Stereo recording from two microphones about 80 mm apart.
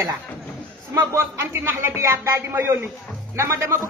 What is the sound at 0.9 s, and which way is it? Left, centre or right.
A man's voice, right.